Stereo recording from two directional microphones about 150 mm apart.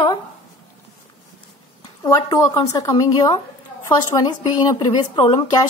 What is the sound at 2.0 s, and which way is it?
A woman's voice, 25° left (ahead or behind).